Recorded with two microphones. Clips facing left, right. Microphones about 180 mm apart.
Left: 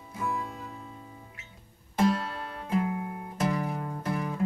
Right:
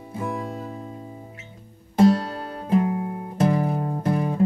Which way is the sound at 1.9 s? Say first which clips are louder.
Right 8 dB; 35° right (ahead or behind).